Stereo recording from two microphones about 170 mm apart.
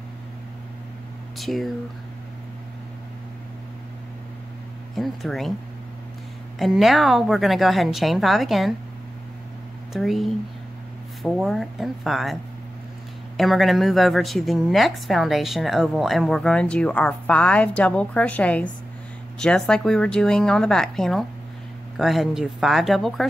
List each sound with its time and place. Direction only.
1.4 s a woman's voice: centre (ahead or behind)
4.9 s a woman's voice: centre (ahead or behind)
6.6 s a woman's voice: centre (ahead or behind)
9.9 s a woman's voice: centre (ahead or behind)
13.4 s a woman's voice: centre (ahead or behind)